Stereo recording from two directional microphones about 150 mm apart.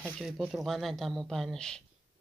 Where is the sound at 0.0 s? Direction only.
5° right (ahead or behind).